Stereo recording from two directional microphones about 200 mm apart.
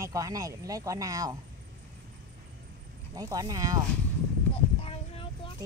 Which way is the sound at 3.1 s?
20° right (ahead or behind).